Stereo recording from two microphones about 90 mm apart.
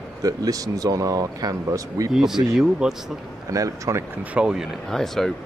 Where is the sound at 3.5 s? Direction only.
40° right (ahead or behind).